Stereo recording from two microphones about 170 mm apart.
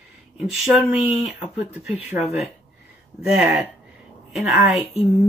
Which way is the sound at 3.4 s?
Centre (ahead or behind).